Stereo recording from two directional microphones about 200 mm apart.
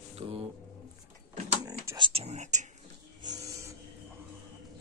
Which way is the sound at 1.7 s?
20° right (ahead or behind).